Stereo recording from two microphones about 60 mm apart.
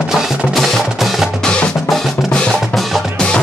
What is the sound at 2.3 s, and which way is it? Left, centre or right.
Drum, centre.